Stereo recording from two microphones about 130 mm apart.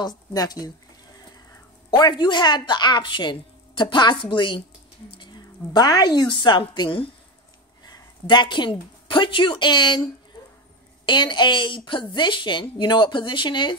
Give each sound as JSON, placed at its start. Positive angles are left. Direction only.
{"t": 0.0, "sound": "speech", "side_deg": 30}
{"t": 1.9, "sound": "a woman's voice", "side_deg": 35}
{"t": 11.1, "sound": "speech", "side_deg": 35}